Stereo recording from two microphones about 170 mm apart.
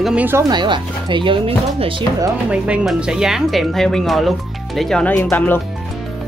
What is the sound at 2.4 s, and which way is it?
Speech, 5° right (ahead or behind).